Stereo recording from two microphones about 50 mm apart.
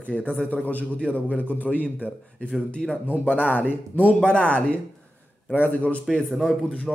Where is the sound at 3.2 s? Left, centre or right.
Left.